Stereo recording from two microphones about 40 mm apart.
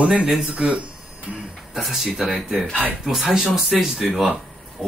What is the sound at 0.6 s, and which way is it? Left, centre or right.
Speech, right.